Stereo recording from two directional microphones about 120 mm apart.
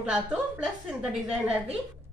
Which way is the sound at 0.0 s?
10° right (ahead or behind).